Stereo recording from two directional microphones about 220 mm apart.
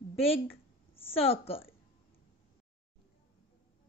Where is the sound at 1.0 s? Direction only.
25° left (ahead or behind).